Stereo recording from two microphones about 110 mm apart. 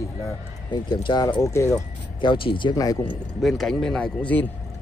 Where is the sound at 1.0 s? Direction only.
40° left (ahead or behind).